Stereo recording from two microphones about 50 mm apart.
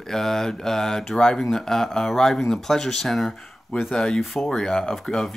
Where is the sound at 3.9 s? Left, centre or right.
Centre.